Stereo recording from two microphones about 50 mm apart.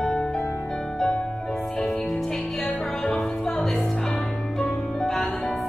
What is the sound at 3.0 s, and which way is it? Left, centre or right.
Music, centre.